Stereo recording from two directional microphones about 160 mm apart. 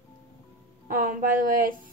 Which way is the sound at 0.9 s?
60° right (ahead or behind).